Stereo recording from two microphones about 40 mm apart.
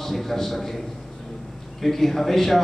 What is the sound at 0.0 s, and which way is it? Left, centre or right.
A man's voice, centre.